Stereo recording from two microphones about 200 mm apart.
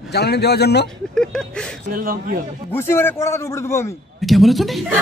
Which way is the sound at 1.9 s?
45° right (ahead or behind).